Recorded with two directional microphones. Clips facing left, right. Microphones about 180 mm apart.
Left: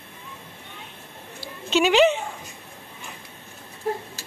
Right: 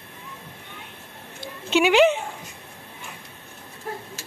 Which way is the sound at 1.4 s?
15° right (ahead or behind).